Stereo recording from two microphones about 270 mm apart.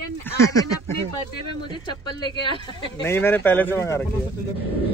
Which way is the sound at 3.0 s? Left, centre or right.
Centre.